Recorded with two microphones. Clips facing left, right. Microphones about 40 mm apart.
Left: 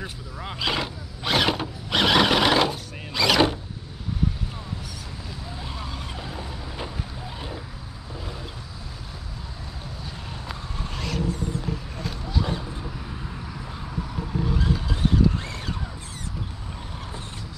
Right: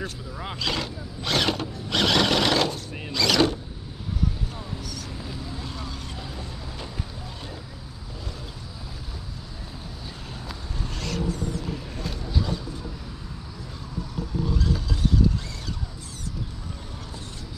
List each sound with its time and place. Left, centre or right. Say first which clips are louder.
0.6 s mechanisms: left 3 dB; centre
5.6 s vehicle: left 1 dB; centre
14.5 s vehicle: left 1 dB; left